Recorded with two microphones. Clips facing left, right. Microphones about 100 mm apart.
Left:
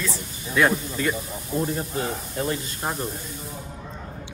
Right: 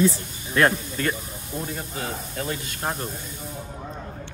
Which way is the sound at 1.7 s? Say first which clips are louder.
Left 4 dB; 35° left (ahead or behind).